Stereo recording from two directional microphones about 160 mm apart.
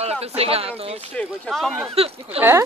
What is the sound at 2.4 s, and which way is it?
Speech, 15° right (ahead or behind).